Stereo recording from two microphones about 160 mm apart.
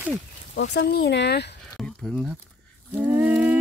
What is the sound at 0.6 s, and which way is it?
Speech, 90° left.